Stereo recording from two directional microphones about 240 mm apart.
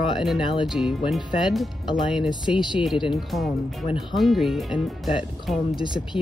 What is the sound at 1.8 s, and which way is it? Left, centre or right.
Speech, centre.